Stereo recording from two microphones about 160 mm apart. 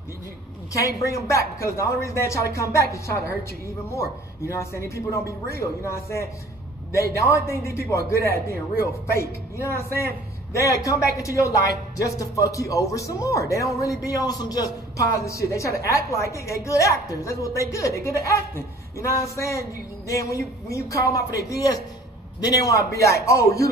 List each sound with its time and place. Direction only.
0.7 s a man's voice: 20° left (ahead or behind)